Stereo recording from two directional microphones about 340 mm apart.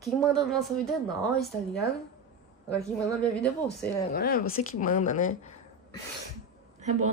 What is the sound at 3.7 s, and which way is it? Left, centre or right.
Speech, left.